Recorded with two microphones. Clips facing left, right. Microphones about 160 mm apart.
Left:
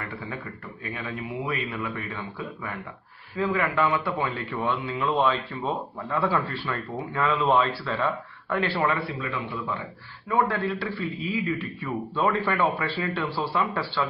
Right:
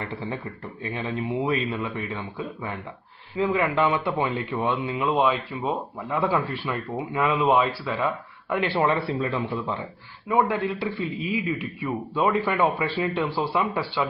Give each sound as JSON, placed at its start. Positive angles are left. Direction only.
{"t": 0.8, "sound": "a man's voice", "side_deg": -25}
{"t": 10.2, "sound": "a man's voice", "side_deg": -15}